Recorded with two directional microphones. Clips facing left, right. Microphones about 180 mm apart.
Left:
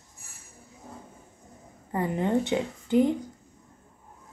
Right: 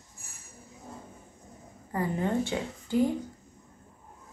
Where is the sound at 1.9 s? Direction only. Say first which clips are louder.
Left 3 dB; 20° left (ahead or behind).